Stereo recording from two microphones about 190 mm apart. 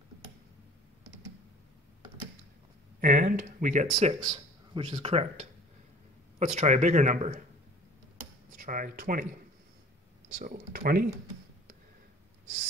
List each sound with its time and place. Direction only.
3.0 s speech: 45° right (ahead or behind)
4.1 s speech: 25° right (ahead or behind); by 7.4 s 40° right (ahead or behind)
8.5 s speech: 45° right (ahead or behind)
10.4 s speech: 45° right (ahead or behind)